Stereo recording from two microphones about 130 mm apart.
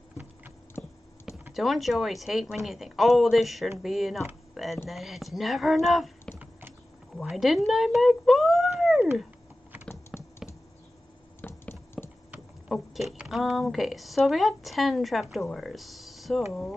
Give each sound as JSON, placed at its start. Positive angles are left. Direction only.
{"t": 0.8, "sound": "a sound", "side_deg": 10}
{"t": 1.5, "sound": "speech", "side_deg": 0}
{"t": 7.2, "sound": "speech", "side_deg": 0}
{"t": 10.1, "sound": "tap", "side_deg": 0}
{"t": 11.4, "sound": "a sound", "side_deg": 15}
{"t": 12.3, "sound": "speech", "side_deg": -5}